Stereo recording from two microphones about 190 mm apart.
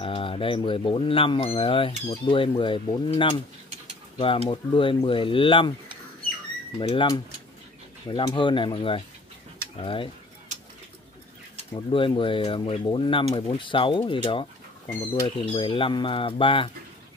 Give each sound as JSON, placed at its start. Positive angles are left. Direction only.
{"t": 0.0, "sound": "speech", "side_deg": 30}
{"t": 4.5, "sound": "speech", "side_deg": 25}
{"t": 6.8, "sound": "speech", "side_deg": 25}
{"t": 11.7, "sound": "speech", "side_deg": 25}